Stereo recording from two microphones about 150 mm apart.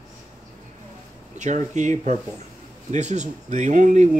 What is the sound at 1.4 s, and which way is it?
Speech, 55° right (ahead or behind).